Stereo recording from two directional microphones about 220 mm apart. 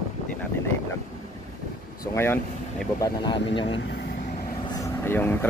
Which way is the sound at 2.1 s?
10° left (ahead or behind).